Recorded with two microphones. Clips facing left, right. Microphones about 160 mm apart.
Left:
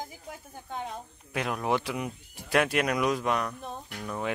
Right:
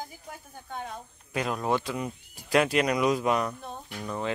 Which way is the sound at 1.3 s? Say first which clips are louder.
Right 1 dB; 5° left (ahead or behind).